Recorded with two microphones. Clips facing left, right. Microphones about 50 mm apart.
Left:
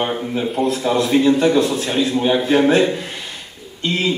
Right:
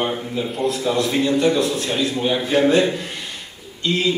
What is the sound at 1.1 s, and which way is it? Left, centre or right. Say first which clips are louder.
A man's voice: left 5 dB; centre.